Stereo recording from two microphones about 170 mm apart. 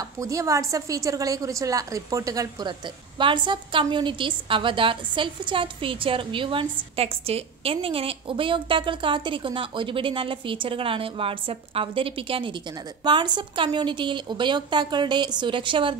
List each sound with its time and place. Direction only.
0.2 s a woman's voice: 20° right (ahead or behind)